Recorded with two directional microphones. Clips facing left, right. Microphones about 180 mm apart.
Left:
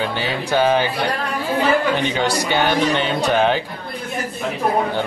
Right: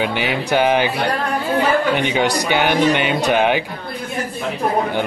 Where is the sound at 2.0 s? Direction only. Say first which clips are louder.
Right 2 dB; 15° right (ahead or behind).